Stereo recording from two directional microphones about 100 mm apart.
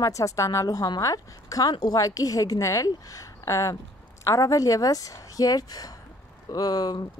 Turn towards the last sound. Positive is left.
turn(degrees=40)  # may be behind; listen again after turning